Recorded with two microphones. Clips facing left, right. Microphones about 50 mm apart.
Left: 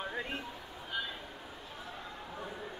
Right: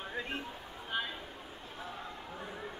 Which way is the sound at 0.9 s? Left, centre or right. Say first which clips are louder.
Right 2 dB; right.